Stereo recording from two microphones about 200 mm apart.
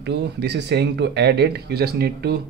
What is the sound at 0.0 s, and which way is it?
Speech, 55° right (ahead or behind).